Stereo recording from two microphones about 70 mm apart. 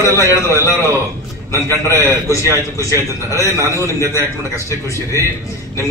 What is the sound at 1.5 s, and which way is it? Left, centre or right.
A man's voice, left.